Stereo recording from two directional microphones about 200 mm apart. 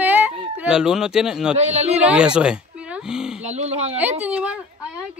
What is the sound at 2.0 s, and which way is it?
Speech, 5° right (ahead or behind).